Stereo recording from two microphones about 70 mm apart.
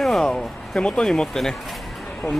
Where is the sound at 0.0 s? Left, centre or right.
Centre.